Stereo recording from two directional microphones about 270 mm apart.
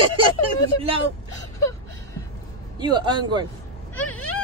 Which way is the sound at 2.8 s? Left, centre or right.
Centre.